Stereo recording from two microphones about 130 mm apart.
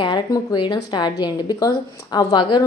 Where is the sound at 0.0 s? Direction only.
30° left (ahead or behind).